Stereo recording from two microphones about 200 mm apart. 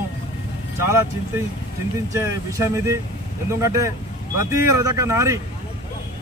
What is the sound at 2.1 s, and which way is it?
Speech, 15° right (ahead or behind).